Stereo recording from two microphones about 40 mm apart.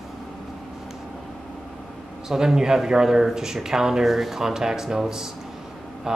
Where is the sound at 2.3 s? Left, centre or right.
Centre.